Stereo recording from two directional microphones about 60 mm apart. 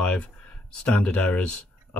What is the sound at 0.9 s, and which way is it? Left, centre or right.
Speech, left.